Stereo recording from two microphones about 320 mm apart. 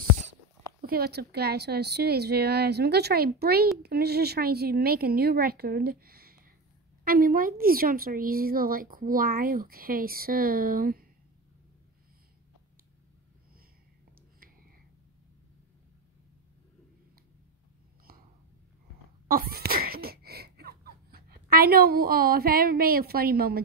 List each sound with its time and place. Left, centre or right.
0.7 s a woman's voice: right
19.2 s wheeze: right